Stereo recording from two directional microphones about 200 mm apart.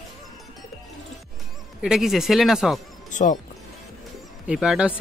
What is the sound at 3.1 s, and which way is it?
Speech, 40° left (ahead or behind).